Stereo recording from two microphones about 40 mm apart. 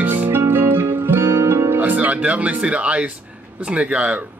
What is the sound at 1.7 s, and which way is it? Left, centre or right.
Speech, right.